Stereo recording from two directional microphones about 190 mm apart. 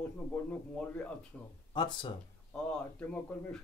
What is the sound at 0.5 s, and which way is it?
Speech, 5° left (ahead or behind).